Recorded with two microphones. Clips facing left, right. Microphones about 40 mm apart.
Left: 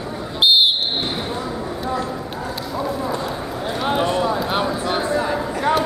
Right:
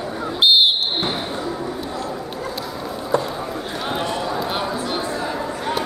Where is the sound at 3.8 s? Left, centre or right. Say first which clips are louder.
Left 6 dB; centre.